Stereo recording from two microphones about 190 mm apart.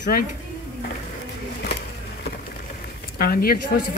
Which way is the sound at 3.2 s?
50° left (ahead or behind).